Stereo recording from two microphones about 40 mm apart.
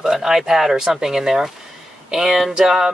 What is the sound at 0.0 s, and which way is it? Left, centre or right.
Speech, centre.